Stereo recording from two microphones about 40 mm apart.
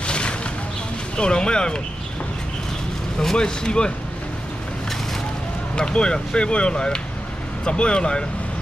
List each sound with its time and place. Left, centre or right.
0.0 s a sound: left
1.1 s speech: left
3.2 s speech: centre
5.8 s speech: left